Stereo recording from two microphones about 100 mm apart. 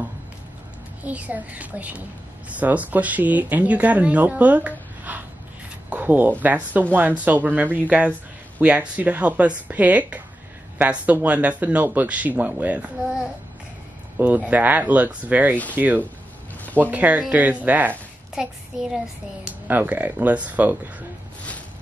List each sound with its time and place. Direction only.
1.0 s speech: 15° right (ahead or behind)
5.9 s a sound: 20° right (ahead or behind)
6.4 s speech: 15° right (ahead or behind)
14.1 s speech: 15° right (ahead or behind)
18.3 s a child's voice: 5° right (ahead or behind)
19.7 s speech: 15° right (ahead or behind)